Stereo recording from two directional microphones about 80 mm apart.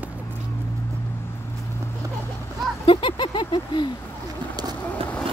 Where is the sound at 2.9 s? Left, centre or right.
Left.